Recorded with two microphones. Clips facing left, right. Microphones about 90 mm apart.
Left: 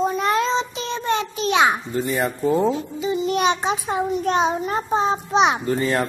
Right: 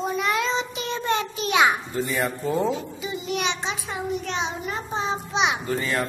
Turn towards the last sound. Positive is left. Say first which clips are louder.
# left 5 dB
turn(degrees=25)  # may be behind; listen again after turning